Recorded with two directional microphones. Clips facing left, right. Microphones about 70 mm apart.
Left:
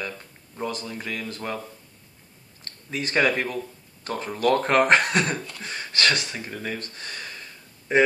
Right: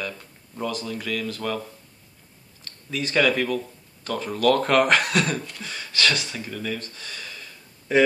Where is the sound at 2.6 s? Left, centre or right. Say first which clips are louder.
Right 1 dB; left.